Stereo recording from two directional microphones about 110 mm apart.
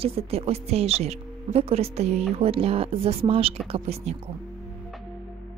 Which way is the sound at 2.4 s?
60° right (ahead or behind).